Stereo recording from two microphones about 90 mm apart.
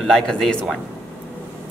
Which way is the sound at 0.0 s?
5° left (ahead or behind).